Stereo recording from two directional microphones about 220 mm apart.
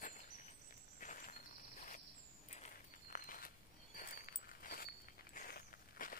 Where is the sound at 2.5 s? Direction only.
35° left (ahead or behind).